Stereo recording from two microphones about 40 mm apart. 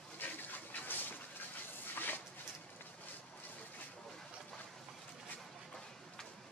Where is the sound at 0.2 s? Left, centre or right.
Left.